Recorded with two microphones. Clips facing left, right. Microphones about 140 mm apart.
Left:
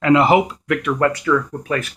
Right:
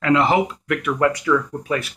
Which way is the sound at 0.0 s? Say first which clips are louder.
Left 4 dB; 15° left (ahead or behind).